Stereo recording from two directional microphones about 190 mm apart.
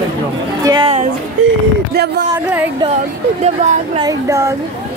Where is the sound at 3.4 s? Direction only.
35° right (ahead or behind).